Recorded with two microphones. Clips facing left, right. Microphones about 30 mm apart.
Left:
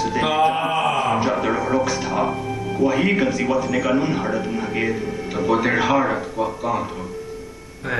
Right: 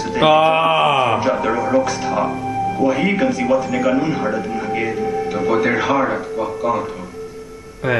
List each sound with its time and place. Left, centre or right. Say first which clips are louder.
0.4 s mantra: right 5 dB; right
1.2 s speech: right 3 dB; centre